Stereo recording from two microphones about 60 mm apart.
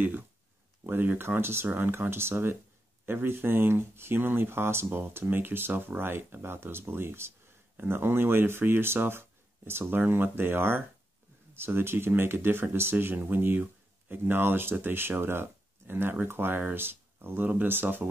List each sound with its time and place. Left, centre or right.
0.8 s speech: right